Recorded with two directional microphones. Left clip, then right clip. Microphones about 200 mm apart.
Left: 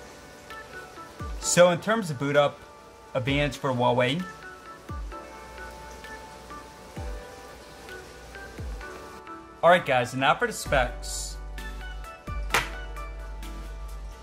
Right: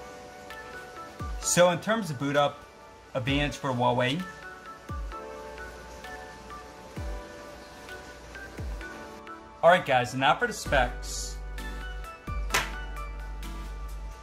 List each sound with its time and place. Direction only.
1.5 s speech: 15° left (ahead or behind)
9.6 s speech: 15° left (ahead or behind)
12.3 s music: centre (ahead or behind)